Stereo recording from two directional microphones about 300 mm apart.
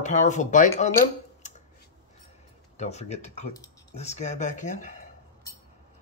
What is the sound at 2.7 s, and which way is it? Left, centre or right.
Speech, left.